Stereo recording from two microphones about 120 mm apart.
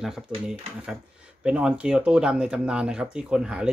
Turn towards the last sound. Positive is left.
turn(degrees=-5)  # may be behind; listen again after turning